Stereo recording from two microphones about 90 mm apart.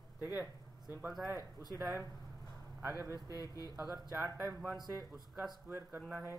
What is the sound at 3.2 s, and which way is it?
Speech, 40° left (ahead or behind).